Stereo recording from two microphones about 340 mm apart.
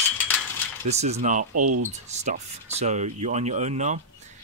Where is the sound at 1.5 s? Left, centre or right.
Right.